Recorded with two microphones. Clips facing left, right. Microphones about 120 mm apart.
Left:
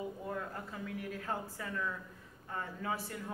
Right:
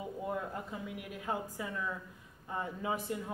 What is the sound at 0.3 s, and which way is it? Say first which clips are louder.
Speech: right 3 dB; 20° right (ahead or behind).